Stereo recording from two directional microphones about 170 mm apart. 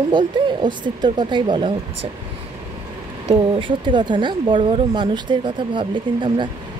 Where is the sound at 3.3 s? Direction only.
30° right (ahead or behind).